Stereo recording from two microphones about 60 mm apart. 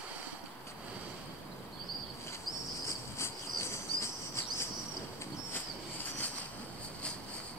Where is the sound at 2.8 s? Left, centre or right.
Left.